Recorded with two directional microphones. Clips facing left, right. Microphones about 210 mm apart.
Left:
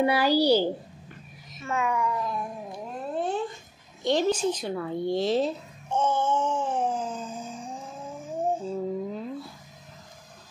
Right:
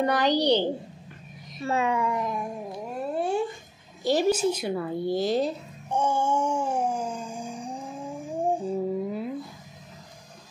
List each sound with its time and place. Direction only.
0.0 s a child's voice: 10° left (ahead or behind)
1.6 s speech: 30° right (ahead or behind)
3.2 s a sound: 10° right (ahead or behind)
4.0 s a child's voice: 5° right (ahead or behind)
5.9 s wail: 15° right (ahead or behind)